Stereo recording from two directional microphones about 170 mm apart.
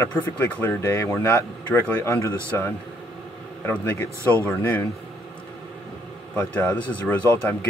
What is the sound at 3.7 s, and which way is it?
Speech, 10° left (ahead or behind).